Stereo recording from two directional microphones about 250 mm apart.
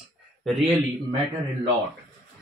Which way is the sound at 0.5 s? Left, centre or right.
Centre.